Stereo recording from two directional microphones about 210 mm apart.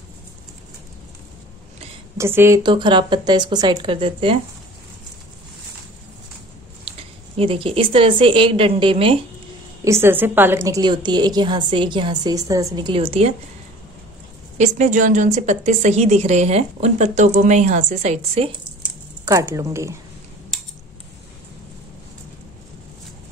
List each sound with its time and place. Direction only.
2.1 s a woman's voice: 10° right (ahead or behind)
7.3 s a woman's voice: 25° right (ahead or behind)
9.8 s a woman's voice: 10° right (ahead or behind); by 13.3 s 30° right (ahead or behind)
14.6 s a woman's voice: 35° right (ahead or behind)
19.2 s a woman's voice: 15° right (ahead or behind)